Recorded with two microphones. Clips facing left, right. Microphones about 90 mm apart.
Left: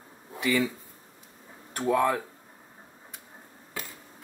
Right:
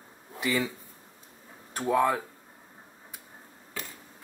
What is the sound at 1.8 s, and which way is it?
Speech, 10° right (ahead or behind).